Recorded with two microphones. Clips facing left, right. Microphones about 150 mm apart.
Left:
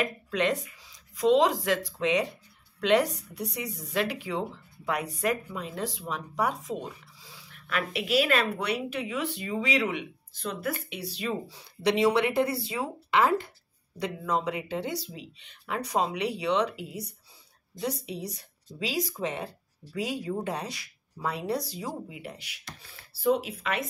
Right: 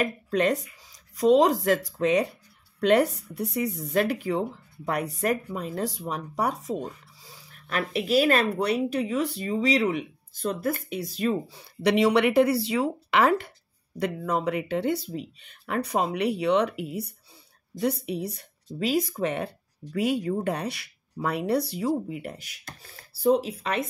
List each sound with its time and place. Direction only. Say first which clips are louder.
0.0 s speech: right 3 dB; 40° right (ahead or behind); by 13.5 s 65° right (ahead or behind)
13.9 s speech: right 3 dB; 55° right (ahead or behind)
15.1 s speech: right 9 dB; 50° right (ahead or behind)